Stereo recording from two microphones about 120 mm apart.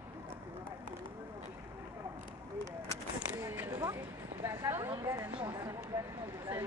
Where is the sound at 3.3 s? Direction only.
25° right (ahead or behind).